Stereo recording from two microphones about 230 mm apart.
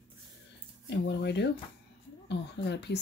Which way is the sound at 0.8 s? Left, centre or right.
Left.